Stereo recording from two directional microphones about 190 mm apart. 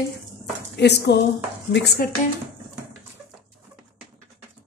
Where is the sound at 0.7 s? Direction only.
65° left (ahead or behind).